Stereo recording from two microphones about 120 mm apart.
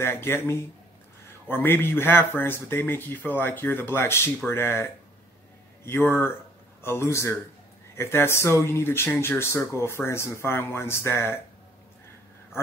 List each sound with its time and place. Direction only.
0.0 s speech: 20° left (ahead or behind)